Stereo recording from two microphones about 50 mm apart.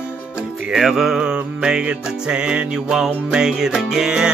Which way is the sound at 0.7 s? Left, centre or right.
Centre.